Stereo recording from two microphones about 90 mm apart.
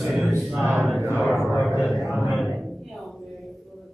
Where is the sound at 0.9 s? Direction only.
30° right (ahead or behind).